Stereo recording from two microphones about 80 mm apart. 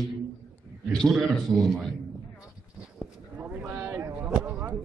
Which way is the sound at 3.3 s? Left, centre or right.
Centre.